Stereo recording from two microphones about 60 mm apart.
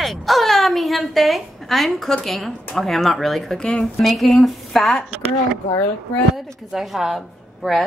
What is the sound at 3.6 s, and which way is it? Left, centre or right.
Speech, centre.